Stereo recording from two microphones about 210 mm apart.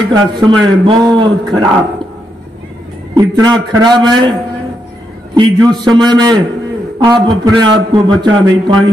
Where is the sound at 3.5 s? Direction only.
20° right (ahead or behind).